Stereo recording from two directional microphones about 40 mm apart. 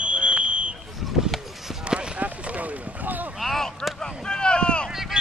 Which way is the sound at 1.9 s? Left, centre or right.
Right.